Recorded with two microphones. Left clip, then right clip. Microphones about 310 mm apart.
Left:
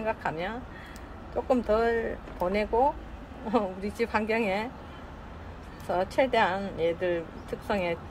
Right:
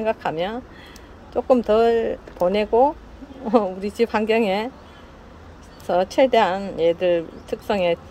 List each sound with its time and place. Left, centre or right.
0.0 s speech: right
5.9 s speech: right